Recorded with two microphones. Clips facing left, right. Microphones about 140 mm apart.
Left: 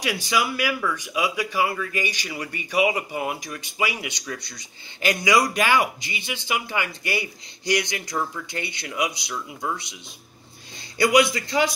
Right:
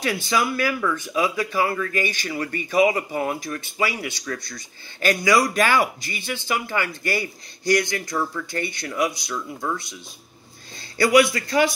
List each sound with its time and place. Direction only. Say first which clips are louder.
0.0 s speech: right 2 dB; 15° left (ahead or behind)
11.0 s speech: right 2 dB; 20° left (ahead or behind)